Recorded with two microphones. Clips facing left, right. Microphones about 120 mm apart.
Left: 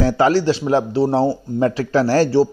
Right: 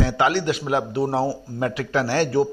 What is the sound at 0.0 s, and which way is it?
Speech, 35° left (ahead or behind).